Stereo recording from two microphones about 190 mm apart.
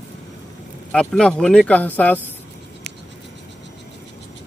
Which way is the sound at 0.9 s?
5° left (ahead or behind).